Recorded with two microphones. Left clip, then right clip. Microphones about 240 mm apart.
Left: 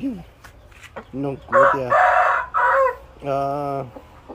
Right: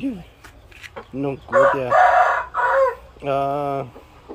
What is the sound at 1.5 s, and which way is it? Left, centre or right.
Chicken, right.